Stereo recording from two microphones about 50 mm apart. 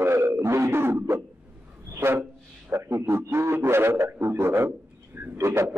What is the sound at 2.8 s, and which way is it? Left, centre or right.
A man's voice, right.